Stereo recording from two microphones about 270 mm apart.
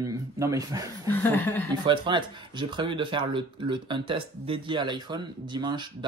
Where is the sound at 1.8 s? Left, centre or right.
Centre.